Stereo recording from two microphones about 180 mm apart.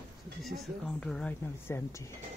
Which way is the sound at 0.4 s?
Centre (ahead or behind).